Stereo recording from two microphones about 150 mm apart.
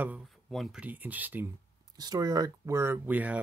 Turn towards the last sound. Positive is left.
turn(degrees=-10)  # may be behind; listen again after turning